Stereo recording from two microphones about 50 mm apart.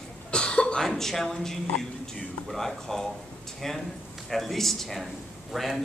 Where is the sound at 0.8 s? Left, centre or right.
Centre.